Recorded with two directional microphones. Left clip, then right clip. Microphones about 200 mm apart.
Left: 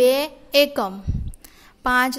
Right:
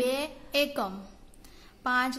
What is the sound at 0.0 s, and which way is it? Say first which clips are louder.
A woman's voice: left 12 dB; 40° left (ahead or behind).